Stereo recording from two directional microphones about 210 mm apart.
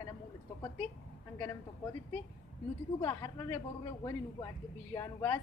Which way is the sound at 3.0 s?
15° left (ahead or behind).